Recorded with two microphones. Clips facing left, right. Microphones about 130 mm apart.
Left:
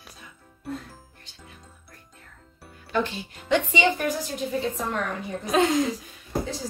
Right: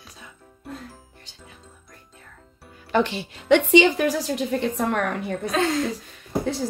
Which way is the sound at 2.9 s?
75° right (ahead or behind).